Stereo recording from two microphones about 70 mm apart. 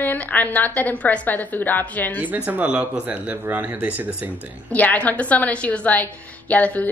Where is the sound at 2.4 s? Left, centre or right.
Centre.